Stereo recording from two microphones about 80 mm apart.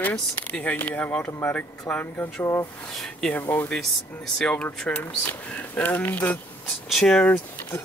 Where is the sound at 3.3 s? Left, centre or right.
Left.